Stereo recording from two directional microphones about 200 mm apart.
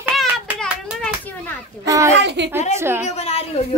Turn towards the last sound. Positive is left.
turn(degrees=30)  # may be behind; listen again after turning